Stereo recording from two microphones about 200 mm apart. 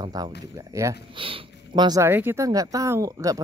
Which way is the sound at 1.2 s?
25° right (ahead or behind).